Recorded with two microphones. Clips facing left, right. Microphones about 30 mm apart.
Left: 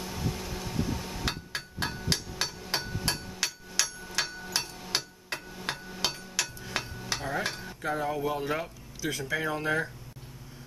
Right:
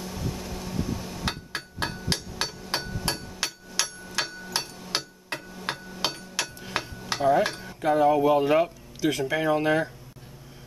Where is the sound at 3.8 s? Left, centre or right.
Centre.